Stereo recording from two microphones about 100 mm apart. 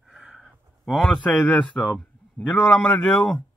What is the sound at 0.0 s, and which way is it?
A man's voice, 5° right (ahead or behind).